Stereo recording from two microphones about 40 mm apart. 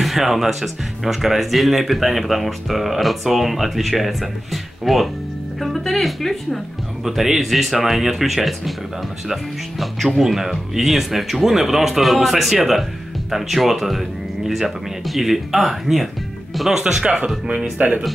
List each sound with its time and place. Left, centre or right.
0.0 s speech: centre
16.8 s speech: centre
17.8 s speech: right